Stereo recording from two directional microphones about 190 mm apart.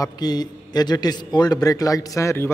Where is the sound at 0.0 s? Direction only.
20° left (ahead or behind).